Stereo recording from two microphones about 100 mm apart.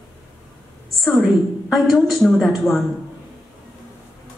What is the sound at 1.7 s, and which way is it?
A woman's voice, centre (ahead or behind).